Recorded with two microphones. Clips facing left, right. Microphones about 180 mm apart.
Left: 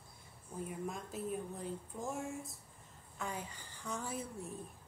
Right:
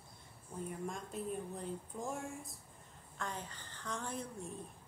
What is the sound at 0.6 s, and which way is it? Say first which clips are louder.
A woman's voice: even; 5° left (ahead or behind).